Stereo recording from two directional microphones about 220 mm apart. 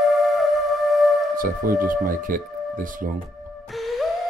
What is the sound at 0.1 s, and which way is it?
Music, centre (ahead or behind).